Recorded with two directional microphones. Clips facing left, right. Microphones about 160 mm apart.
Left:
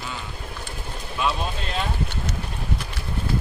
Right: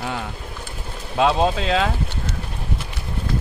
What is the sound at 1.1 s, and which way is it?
Speech, 90° right.